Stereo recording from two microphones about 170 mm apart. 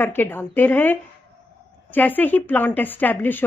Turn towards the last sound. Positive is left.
turn(degrees=10)  # may be behind; listen again after turning